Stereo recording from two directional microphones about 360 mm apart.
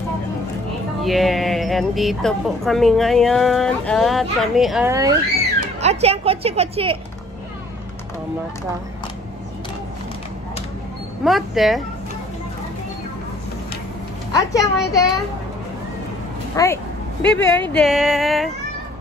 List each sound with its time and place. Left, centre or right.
1.0 s a woman's voice: centre
11.2 s a woman's voice: centre
14.3 s a woman's voice: centre
16.5 s a woman's voice: centre